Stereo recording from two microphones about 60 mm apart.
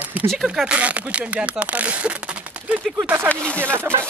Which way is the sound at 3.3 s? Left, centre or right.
Left.